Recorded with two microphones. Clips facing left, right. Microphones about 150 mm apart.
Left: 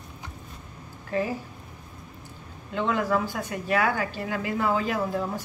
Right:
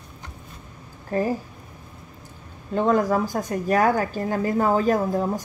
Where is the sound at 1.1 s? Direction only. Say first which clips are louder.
Right 3 dB; 45° right (ahead or behind).